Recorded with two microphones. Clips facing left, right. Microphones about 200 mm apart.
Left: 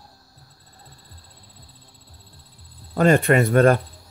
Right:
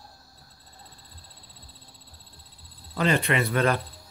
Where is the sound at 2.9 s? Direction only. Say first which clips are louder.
Left 8 dB; 50° left (ahead or behind).